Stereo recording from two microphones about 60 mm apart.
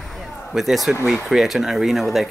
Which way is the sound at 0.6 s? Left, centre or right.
Centre.